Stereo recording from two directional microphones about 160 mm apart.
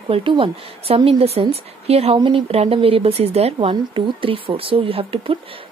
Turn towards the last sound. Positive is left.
turn(degrees=-35)  # may be behind; listen again after turning